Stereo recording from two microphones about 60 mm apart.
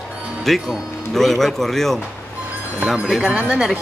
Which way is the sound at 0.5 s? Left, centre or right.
Centre.